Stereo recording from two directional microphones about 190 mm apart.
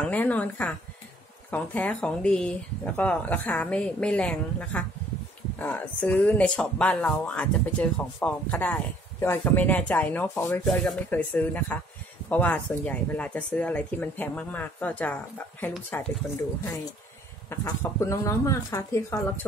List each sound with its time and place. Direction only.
0.0 s speech: 5° left (ahead or behind)
17.5 s speech: 15° left (ahead or behind)